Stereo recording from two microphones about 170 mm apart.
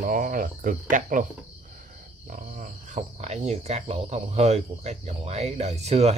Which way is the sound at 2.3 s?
50° right (ahead or behind).